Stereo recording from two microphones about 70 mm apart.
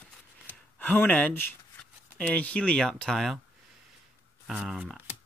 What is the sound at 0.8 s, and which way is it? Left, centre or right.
Speech, left.